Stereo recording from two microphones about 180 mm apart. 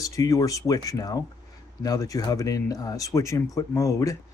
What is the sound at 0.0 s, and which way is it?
Speech, 20° left (ahead or behind).